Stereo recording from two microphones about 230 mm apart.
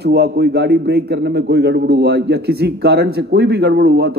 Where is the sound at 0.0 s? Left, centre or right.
Right.